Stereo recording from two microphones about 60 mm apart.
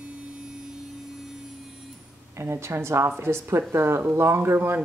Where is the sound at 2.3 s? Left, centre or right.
Right.